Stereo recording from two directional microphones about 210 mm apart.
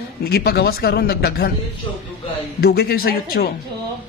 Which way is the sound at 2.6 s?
50° left (ahead or behind).